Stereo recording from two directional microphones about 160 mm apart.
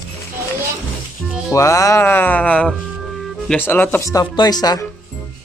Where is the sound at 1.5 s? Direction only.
20° left (ahead or behind).